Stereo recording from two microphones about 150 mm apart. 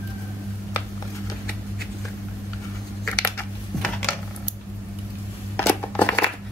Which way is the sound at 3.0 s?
10° left (ahead or behind).